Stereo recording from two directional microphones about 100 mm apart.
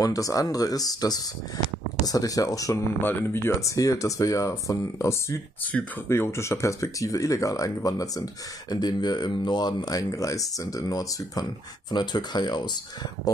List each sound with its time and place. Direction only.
0.0 s speech: 35° left (ahead or behind)
3.0 s speech: 20° left (ahead or behind)
3.6 s speech: 35° left (ahead or behind)
5.7 s speech: 10° left (ahead or behind)
6.0 s speech: 25° left (ahead or behind); by 12.6 s 45° left (ahead or behind)